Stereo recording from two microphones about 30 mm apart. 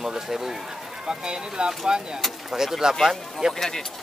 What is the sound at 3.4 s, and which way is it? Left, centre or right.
Speech, right.